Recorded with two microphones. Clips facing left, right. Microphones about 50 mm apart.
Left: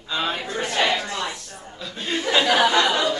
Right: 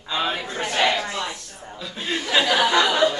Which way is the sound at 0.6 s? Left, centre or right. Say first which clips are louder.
Right 1 dB; centre.